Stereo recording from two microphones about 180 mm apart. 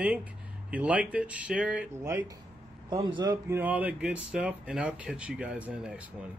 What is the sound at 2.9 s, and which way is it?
Speech, 25° right (ahead or behind).